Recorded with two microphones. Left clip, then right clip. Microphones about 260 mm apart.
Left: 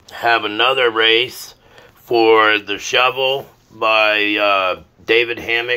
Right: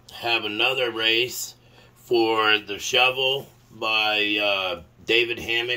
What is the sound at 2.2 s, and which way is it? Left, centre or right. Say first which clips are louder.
Speech: left 9 dB; left.